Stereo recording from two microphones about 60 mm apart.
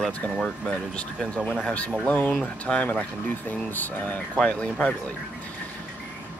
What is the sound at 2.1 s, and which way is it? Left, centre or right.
Speech, left.